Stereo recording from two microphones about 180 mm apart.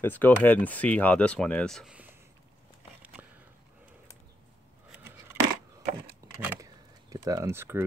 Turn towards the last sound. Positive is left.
turn(degrees=-15)  # may be behind; listen again after turning